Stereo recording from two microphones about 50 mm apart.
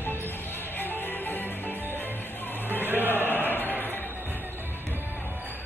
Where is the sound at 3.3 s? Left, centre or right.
Left.